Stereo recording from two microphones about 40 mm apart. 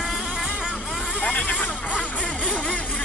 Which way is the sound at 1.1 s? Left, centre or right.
Left.